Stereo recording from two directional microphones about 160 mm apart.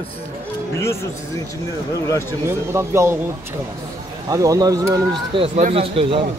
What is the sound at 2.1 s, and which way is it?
Speech, 15° left (ahead or behind).